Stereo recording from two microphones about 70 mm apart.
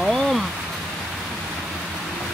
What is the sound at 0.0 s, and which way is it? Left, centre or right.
Rain, centre.